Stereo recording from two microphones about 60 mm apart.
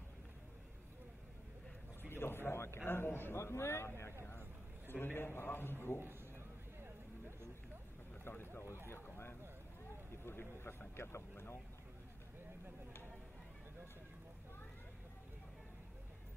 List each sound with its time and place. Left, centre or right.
2.0 s a man's voice: left
4.9 s a man's voice: left
8.2 s vehicle: left
8.9 s a sound: left
10.2 s speech: left